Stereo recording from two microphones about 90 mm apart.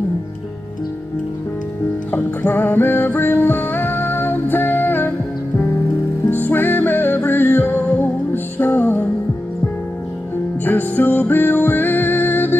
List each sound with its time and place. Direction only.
2.0 s music: 20° left (ahead or behind)
6.3 s music: 20° left (ahead or behind)
10.6 s music: 20° left (ahead or behind)